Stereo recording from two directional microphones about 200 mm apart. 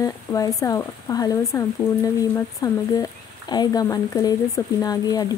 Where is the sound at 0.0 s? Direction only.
15° left (ahead or behind).